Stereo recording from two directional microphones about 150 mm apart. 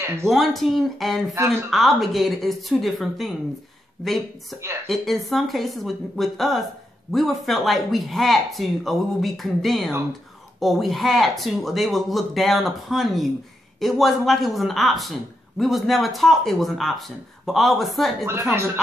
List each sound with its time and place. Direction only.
0.0 s speech: 15° right (ahead or behind)
0.3 s a woman's voice: centre (ahead or behind)
1.3 s speech: 20° right (ahead or behind)
1.7 s a woman's voice: centre (ahead or behind)
18.2 s speech: 15° right (ahead or behind)